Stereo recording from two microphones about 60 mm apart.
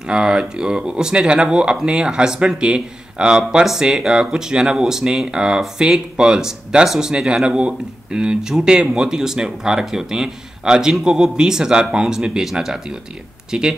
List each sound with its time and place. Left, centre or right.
0.1 s speech: centre